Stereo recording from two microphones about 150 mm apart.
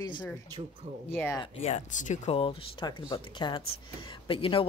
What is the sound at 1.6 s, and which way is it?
Speech, 55° left (ahead or behind).